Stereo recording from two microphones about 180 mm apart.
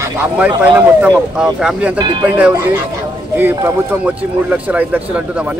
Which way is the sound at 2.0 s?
25° right (ahead or behind).